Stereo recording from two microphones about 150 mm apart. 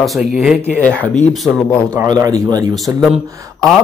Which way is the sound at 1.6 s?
25° right (ahead or behind).